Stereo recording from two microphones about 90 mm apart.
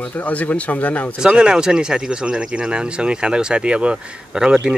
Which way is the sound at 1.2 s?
10° right (ahead or behind).